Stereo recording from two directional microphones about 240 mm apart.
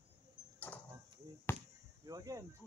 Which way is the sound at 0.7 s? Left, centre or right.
Centre.